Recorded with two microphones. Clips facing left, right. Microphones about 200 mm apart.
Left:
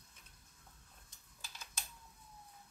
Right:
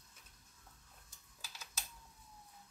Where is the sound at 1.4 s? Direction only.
5° right (ahead or behind).